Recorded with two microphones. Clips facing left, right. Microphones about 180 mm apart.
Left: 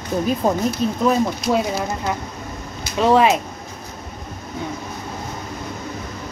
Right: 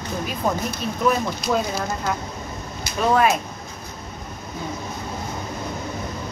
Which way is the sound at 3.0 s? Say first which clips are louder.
Left 4 dB; 20° left (ahead or behind).